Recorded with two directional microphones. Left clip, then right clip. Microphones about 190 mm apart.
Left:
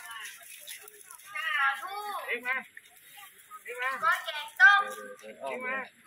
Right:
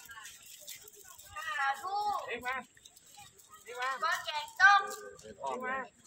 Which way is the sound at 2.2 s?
20° right (ahead or behind).